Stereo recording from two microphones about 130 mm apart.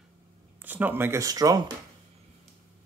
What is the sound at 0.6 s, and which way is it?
Speech, 15° right (ahead or behind).